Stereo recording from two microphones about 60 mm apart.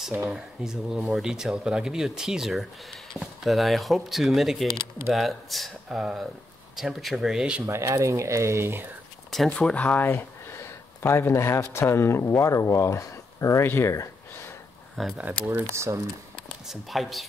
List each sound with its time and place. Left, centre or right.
0.3 s speech: centre
7.6 s speech: right
9.5 s speech: centre
10.0 s speech: left
15.2 s speech: right
15.6 s speech: right
16.6 s speech: centre